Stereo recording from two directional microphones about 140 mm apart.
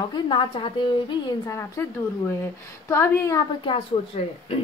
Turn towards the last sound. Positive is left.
turn(degrees=40)  # may be behind; listen again after turning